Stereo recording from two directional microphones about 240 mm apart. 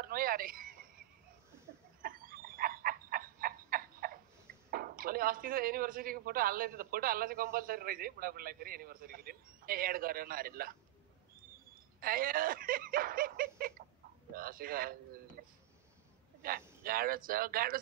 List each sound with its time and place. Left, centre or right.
0.0 s a sound: right
2.0 s frog: right
4.6 s speech: right
12.0 s speech: right
13.6 s cat: right
14.3 s speech: right
16.8 s speech: right